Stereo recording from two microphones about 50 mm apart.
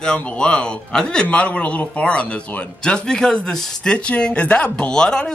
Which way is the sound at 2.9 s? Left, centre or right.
Centre.